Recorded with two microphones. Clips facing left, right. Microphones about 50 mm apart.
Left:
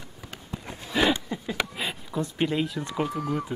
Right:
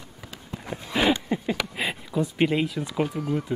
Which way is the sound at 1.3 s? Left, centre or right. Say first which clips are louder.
Right 6 dB; right.